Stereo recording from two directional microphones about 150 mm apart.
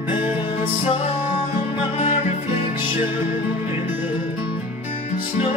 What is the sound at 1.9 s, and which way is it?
Music, 40° left (ahead or behind).